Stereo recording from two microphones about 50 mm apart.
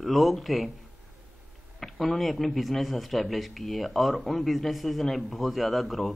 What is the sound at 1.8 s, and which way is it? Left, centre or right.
Speech, centre.